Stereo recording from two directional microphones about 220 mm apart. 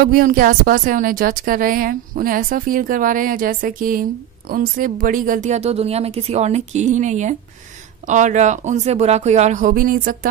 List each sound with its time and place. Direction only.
0.0 s speech: 40° right (ahead or behind)